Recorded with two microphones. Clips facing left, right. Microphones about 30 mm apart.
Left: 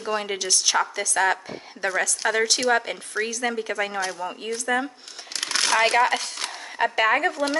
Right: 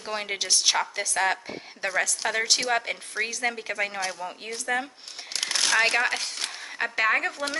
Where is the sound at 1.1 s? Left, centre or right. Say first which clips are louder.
Left 3 dB; centre.